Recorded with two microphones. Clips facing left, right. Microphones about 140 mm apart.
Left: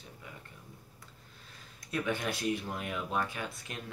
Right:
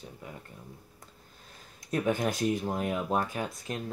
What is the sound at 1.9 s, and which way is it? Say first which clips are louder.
Speech: right 5 dB; 40° right (ahead or behind).